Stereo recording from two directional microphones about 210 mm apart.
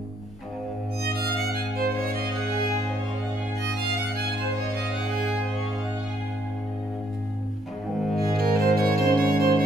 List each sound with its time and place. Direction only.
1.0 s music: 45° right (ahead or behind)
8.4 s music: 45° right (ahead or behind)